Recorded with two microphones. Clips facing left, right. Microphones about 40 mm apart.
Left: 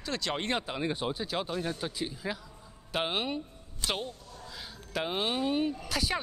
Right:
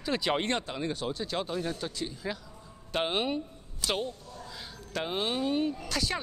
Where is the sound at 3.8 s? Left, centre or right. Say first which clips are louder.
Right 2 dB; left.